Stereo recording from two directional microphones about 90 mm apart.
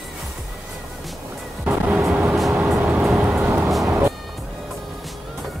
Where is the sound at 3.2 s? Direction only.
15° right (ahead or behind).